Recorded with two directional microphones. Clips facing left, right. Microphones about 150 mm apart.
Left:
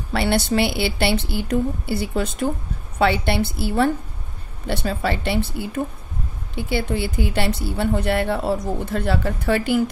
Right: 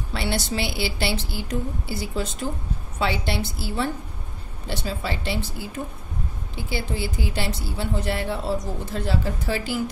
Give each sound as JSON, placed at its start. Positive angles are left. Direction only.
{"t": 0.1, "sound": "a woman's voice", "side_deg": 60}